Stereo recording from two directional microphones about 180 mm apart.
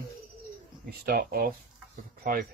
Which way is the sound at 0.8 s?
60° right (ahead or behind).